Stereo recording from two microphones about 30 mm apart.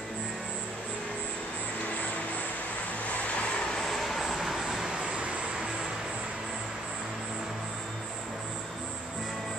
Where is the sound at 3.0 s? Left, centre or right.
Left.